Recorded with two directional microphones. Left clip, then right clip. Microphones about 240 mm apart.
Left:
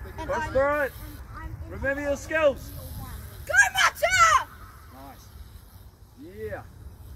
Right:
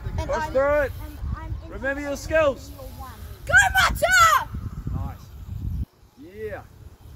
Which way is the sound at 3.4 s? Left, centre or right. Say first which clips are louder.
Right 3 dB; right.